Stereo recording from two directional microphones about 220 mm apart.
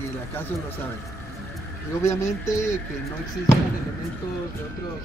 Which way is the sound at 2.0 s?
15° left (ahead or behind).